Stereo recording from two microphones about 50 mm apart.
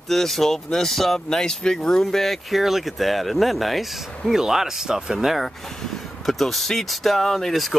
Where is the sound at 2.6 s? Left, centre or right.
Centre.